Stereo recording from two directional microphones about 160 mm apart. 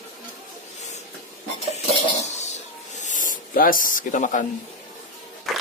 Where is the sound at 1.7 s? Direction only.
45° left (ahead or behind).